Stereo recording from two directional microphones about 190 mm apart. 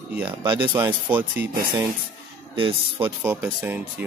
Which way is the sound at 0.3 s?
25° right (ahead or behind).